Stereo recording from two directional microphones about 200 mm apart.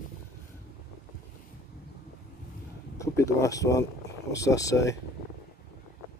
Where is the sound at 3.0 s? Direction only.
15° left (ahead or behind).